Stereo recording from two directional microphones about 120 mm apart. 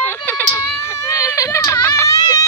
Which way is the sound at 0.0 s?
15° left (ahead or behind).